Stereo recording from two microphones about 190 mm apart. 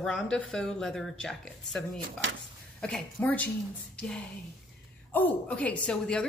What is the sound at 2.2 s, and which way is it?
Speech, 75° right (ahead or behind).